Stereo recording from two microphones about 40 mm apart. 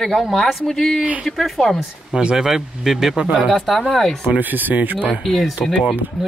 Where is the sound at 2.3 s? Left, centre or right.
Centre.